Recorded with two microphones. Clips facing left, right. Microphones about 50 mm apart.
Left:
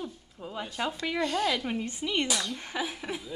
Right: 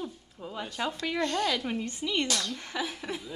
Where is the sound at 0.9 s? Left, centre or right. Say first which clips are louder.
Even; centre.